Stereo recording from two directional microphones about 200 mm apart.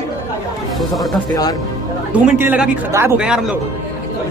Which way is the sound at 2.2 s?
10° right (ahead or behind).